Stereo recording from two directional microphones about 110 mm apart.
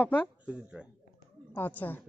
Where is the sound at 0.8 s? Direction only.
10° right (ahead or behind).